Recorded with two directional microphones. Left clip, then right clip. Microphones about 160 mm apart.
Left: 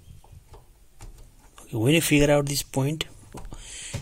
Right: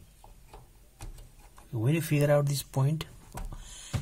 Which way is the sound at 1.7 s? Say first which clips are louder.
Left 10 dB; 25° left (ahead or behind).